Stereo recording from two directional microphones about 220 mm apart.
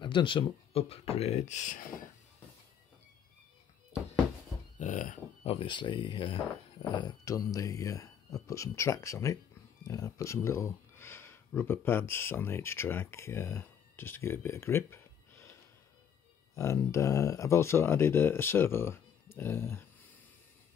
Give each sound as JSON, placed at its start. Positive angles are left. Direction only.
{"t": 0.0, "sound": "speech", "side_deg": 20}
{"t": 4.7, "sound": "speech", "side_deg": 35}
{"t": 16.5, "sound": "speech", "side_deg": 15}